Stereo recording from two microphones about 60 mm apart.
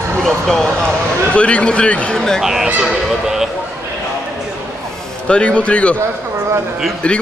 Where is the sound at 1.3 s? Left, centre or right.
Centre.